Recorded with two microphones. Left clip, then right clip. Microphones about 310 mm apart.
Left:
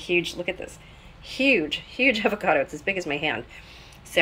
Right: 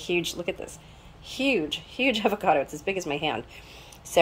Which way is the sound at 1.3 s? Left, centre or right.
Right.